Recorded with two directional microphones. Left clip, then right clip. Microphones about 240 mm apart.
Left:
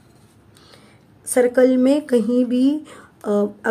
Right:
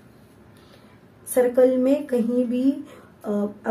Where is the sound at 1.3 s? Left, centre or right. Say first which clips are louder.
Left 2 dB; left.